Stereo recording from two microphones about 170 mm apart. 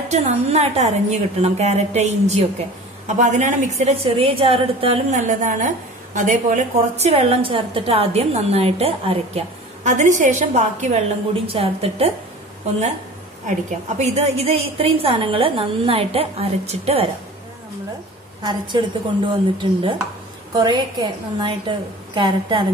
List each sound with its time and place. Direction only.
0.1 s a woman's voice: 40° right (ahead or behind)
9.8 s a woman's voice: 45° right (ahead or behind)
13.5 s a woman's voice: 40° right (ahead or behind)
18.4 s a woman's voice: 25° right (ahead or behind)